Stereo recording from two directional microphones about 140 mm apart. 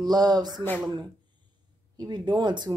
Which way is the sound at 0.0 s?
30° right (ahead or behind).